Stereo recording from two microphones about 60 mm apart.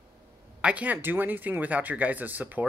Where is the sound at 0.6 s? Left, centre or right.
Right.